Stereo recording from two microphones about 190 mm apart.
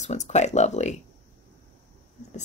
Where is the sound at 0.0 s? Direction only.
40° left (ahead or behind).